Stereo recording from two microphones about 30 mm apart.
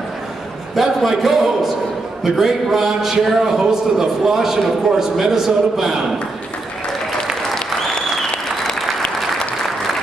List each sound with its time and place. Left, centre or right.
0.7 s a man's voice: centre
7.4 s applause: centre